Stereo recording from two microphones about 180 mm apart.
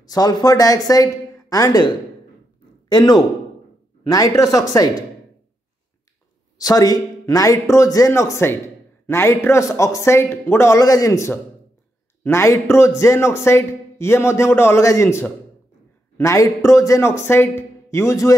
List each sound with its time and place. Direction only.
0.0 s speech: 20° left (ahead or behind)
2.9 s speech: 20° left (ahead or behind)
6.6 s a man's voice: 20° left (ahead or behind)